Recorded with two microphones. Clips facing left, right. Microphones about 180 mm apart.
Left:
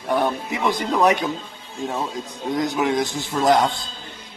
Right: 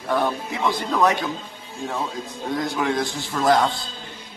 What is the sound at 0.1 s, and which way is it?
Speech, 15° left (ahead or behind).